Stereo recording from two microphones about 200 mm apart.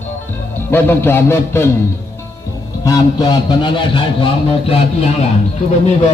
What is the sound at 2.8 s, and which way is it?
A man's voice, 20° left (ahead or behind).